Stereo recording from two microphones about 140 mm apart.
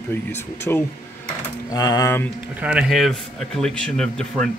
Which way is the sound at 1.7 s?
25° left (ahead or behind).